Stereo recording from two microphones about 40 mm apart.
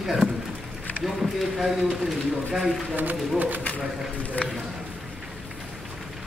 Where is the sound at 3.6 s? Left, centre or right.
Left.